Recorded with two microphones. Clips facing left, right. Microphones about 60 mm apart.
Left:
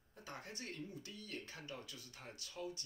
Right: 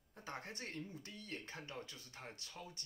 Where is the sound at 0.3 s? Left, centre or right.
Right.